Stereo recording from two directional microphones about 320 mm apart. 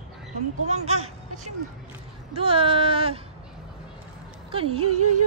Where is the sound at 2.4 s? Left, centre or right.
Centre.